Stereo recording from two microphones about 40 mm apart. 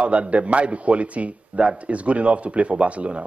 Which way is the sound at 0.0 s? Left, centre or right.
Right.